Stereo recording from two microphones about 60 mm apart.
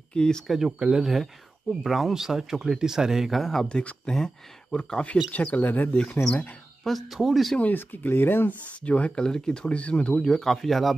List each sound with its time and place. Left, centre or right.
0.1 s speech: centre
0.7 s speech: centre
3.6 s speech: centre
5.3 s speech: left
6.2 s speech: centre
7.2 s speech: centre
7.7 s speech: left
8.8 s speech: left
10.1 s speech: centre